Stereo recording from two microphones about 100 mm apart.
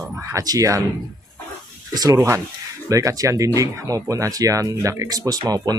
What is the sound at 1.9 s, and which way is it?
Speech, 40° right (ahead or behind).